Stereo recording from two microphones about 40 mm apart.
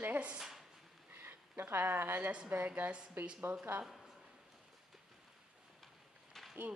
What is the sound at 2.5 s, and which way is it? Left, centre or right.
Speech, right.